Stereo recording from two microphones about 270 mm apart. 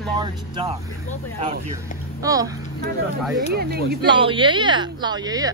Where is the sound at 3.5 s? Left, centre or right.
Right.